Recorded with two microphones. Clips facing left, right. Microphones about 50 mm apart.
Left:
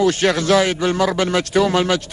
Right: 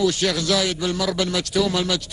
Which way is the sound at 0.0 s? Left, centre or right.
Left.